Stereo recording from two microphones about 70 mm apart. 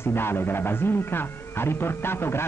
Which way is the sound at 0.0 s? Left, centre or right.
Left.